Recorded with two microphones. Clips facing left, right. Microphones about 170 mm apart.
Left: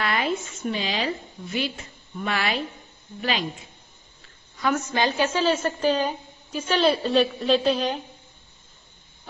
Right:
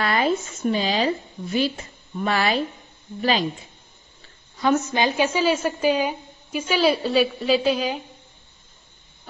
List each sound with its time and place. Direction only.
0.0 s a woman's voice: 35° right (ahead or behind)
4.6 s a woman's voice: 25° right (ahead or behind); by 8.0 s 5° right (ahead or behind)